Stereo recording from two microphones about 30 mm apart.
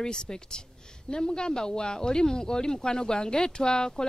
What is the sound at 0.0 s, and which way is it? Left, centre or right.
Speech, left.